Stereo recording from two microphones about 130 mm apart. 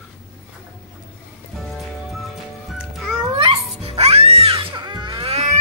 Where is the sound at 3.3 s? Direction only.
45° right (ahead or behind).